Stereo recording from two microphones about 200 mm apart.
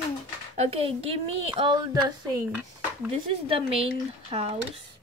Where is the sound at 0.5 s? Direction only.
30° right (ahead or behind).